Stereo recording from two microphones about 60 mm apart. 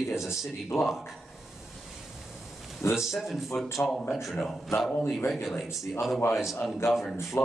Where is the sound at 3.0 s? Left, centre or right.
Centre.